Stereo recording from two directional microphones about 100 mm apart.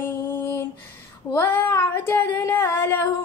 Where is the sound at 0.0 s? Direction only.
25° left (ahead or behind).